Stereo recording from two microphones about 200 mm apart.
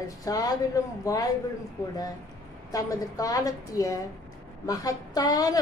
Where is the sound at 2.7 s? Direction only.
15° left (ahead or behind).